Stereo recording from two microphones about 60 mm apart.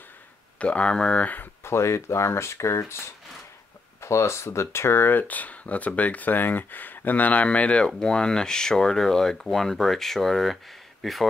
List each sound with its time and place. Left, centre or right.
0.6 s speech: left
1.2 s speech: left
1.6 s speech: left
4.0 s speech: left; by 11.2 s centre